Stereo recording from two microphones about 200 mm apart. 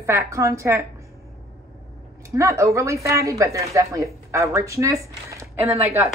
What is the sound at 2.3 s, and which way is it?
Speech, 15° right (ahead or behind).